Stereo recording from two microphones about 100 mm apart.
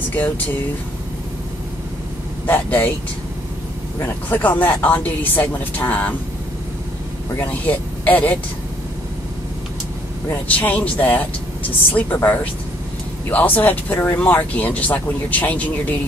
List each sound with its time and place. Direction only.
2.4 s speech: 20° left (ahead or behind)
4.0 s speech: 15° left (ahead or behind)
7.3 s speech: 15° left (ahead or behind)
10.5 s speech: 15° left (ahead or behind)